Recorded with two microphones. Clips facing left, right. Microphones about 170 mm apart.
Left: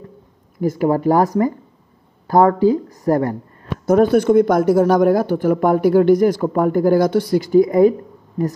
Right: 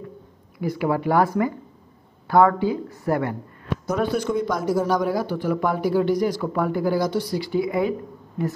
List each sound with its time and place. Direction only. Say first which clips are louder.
0.6 s speech: left 6 dB; 45° left (ahead or behind)
3.8 s speech: left 11 dB; 50° left (ahead or behind)